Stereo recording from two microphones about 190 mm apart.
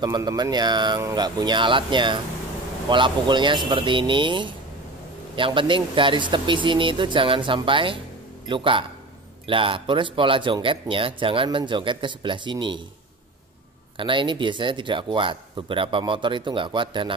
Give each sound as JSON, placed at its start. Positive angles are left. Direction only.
{"t": 0.0, "sound": "speech", "side_deg": -20}
{"t": 13.9, "sound": "speech", "side_deg": -25}